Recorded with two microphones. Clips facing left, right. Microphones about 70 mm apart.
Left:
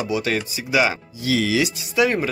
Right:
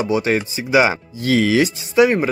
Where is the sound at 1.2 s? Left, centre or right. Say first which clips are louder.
Right 5 dB; right.